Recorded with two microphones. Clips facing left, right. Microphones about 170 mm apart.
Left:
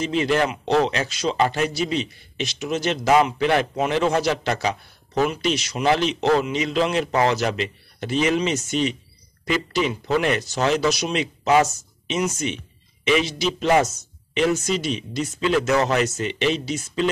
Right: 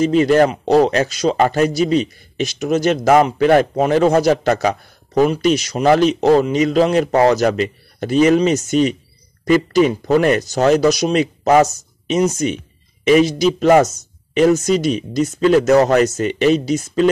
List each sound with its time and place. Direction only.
0.0 s a man's voice: 45° right (ahead or behind)